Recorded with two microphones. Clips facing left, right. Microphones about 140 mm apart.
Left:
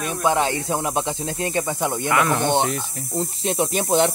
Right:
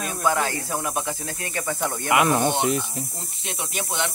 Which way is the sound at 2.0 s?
20° right (ahead or behind).